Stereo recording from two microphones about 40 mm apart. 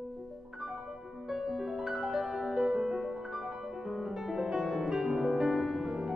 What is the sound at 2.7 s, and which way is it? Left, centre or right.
Music, centre.